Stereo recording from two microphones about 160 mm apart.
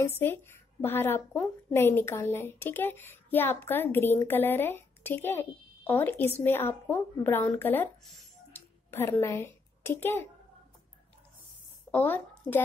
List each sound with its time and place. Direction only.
0.0 s a woman's voice: 15° left (ahead or behind)
8.5 s a sound: 15° left (ahead or behind)
11.9 s speech: 10° left (ahead or behind)